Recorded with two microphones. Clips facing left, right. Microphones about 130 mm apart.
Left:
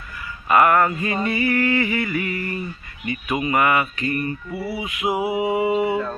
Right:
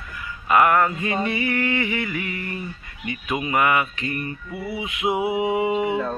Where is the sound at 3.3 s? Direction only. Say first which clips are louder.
Left 1 dB; 5° right (ahead or behind).